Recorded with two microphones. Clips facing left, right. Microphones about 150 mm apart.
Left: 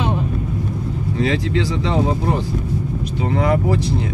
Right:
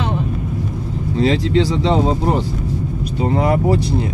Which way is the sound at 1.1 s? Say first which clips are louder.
Right 4 dB; 30° right (ahead or behind).